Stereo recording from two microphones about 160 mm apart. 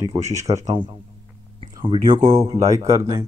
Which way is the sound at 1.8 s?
30° right (ahead or behind).